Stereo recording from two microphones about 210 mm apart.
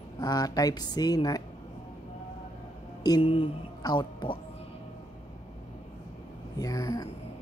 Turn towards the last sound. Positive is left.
turn(degrees=15)  # may be behind; listen again after turning